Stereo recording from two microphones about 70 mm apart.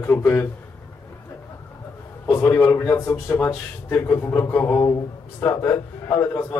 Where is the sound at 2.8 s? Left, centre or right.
Left.